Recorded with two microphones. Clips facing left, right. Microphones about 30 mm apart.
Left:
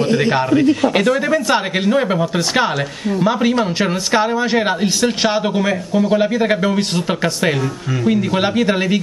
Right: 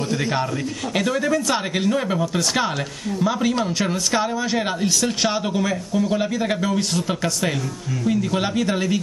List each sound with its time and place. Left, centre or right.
0.3 s speech: left